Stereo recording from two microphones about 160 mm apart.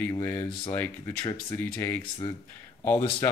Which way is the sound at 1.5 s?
10° left (ahead or behind).